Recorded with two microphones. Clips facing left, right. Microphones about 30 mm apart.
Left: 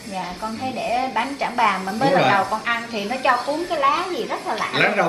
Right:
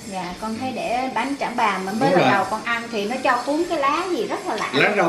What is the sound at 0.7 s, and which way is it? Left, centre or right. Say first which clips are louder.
A woman's voice: left 2 dB; centre.